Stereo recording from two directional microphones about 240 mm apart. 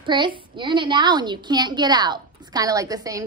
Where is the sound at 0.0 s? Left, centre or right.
Centre.